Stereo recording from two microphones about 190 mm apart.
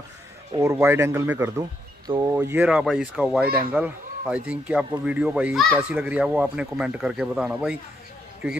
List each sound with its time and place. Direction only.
0.5 s speech: 15° right (ahead or behind)
2.0 s speech: 20° right (ahead or behind)
2.3 s a man's voice: 10° right (ahead or behind)
3.4 s speech: 50° right (ahead or behind)
3.7 s a man's voice: 5° right (ahead or behind)